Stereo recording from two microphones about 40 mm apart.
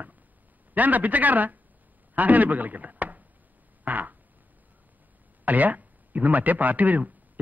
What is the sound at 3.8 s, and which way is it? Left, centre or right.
Fart, right.